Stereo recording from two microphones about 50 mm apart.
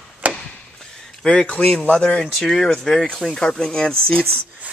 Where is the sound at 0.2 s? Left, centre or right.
Right.